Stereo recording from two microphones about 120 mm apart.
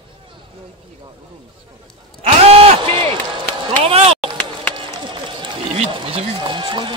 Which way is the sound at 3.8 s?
50° right (ahead or behind).